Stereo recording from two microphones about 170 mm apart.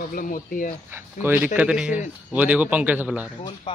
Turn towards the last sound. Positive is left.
turn(degrees=-10)  # may be behind; listen again after turning